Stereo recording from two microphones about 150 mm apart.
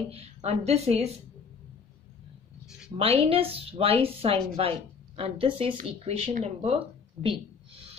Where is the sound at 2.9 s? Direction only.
45° right (ahead or behind).